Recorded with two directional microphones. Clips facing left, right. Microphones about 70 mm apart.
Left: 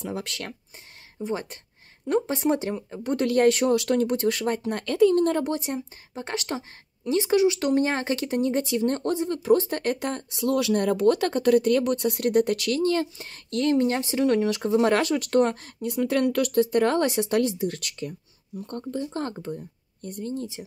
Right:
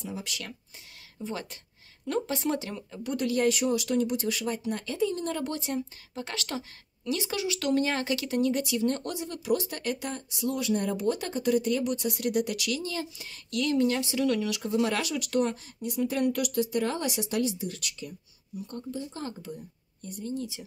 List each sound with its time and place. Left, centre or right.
0.0 s speech: left
1.2 s speech: left
3.2 s speech: left
5.4 s speech: left